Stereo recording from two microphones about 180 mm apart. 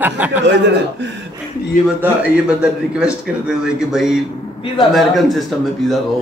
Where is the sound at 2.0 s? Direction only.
5° right (ahead or behind).